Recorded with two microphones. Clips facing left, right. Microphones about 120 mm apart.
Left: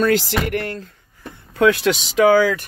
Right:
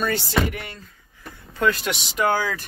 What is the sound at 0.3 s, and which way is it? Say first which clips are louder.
Speech: left 3 dB; 85° left.